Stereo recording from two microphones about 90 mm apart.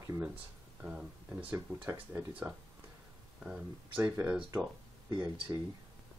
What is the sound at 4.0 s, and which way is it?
Speech, 20° right (ahead or behind).